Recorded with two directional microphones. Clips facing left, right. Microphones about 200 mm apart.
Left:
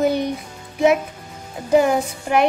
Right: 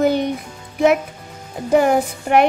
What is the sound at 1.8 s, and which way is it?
Speech, 60° right (ahead or behind).